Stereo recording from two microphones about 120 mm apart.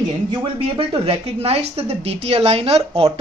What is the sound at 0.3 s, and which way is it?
A woman's voice, 45° right (ahead or behind).